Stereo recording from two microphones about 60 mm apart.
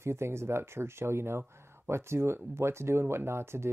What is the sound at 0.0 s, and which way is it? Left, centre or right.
Speech, right.